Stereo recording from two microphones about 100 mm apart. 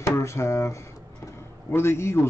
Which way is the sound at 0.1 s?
30° left (ahead or behind).